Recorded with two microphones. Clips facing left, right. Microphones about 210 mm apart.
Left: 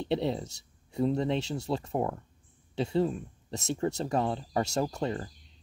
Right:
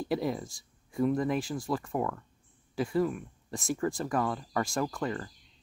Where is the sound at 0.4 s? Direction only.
70° left (ahead or behind).